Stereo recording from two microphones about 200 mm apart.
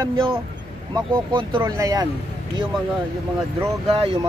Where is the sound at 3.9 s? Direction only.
25° right (ahead or behind).